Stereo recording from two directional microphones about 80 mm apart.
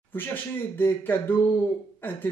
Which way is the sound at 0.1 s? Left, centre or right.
Left.